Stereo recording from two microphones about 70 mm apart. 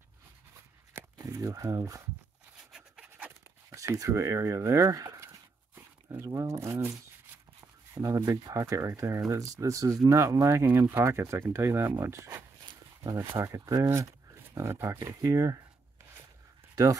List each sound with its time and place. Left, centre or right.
1.1 s speech: right
2.5 s a sound: centre
3.7 s speech: right
8.0 s speech: right
8.3 s speech: right
10.9 s speech: right
16.8 s speech: right